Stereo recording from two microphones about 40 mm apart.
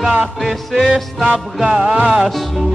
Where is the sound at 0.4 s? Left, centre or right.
Centre.